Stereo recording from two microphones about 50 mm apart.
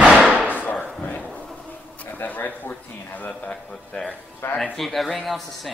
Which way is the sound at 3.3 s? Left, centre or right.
Centre.